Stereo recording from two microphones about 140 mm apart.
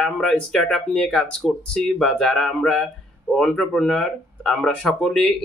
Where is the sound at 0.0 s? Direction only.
5° left (ahead or behind).